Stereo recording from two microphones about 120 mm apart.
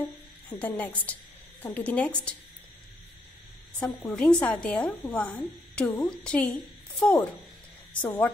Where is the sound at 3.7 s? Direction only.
10° left (ahead or behind).